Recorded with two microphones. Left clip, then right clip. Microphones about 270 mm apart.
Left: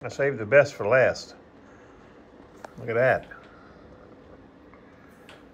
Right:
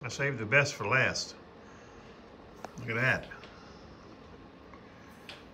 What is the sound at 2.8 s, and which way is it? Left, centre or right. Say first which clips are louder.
Speech: left 8 dB; centre.